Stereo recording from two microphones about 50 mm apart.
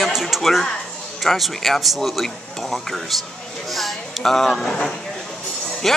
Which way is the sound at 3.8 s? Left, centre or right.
Centre.